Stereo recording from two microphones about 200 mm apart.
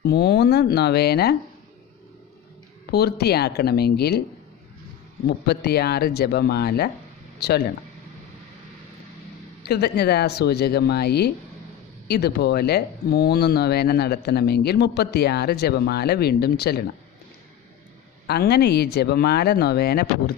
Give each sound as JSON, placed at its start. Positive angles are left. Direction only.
{"t": 0.0, "sound": "speech", "side_deg": 50}
{"t": 2.9, "sound": "speech", "side_deg": 55}
{"t": 5.5, "sound": "speech", "side_deg": 55}
{"t": 9.7, "sound": "speech", "side_deg": 55}
{"t": 18.2, "sound": "speech", "side_deg": 55}